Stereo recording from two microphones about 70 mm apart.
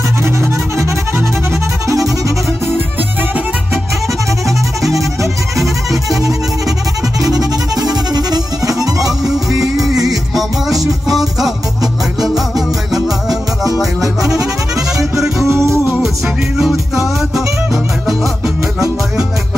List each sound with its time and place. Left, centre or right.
0.2 s music: right
3.0 s music: right
4.5 s music: centre
7.2 s music: right
9.2 s music: centre
15.1 s music: centre
15.4 s music: right